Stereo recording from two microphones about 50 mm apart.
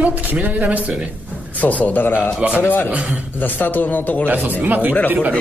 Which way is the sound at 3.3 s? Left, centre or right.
Left.